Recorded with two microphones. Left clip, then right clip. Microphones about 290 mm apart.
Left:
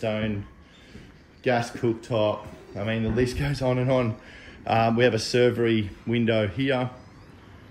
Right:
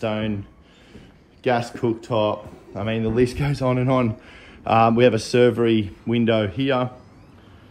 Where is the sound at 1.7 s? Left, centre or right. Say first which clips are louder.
Right 3 dB; centre.